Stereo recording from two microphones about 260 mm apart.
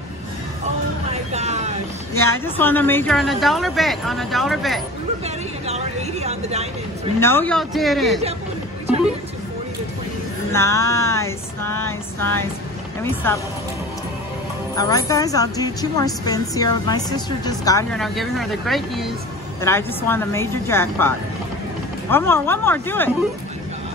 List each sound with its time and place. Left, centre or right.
1.1 s vehicle: right
2.1 s a woman's voice: centre
5.2 s a sound: right
7.2 s a woman's voice: centre
10.5 s a woman's voice: centre
14.8 s a woman's voice: centre
17.9 s a woman's voice: centre
22.1 s a woman's voice: centre